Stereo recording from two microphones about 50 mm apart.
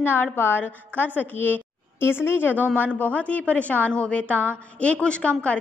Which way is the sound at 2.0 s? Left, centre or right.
Left.